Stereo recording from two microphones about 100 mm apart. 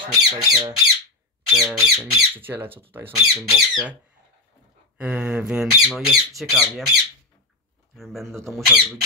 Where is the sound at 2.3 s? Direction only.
20° right (ahead or behind).